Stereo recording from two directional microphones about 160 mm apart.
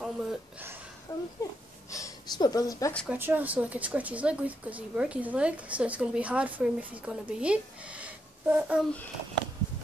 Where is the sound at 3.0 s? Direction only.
10° right (ahead or behind).